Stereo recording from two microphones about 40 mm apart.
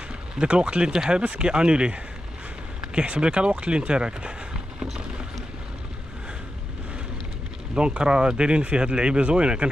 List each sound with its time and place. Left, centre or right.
0.4 s speech: right
7.7 s speech: right